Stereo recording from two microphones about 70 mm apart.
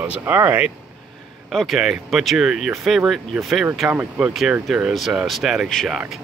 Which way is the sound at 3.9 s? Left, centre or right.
Right.